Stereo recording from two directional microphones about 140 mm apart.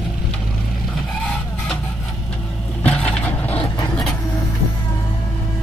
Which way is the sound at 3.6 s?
30° left (ahead or behind).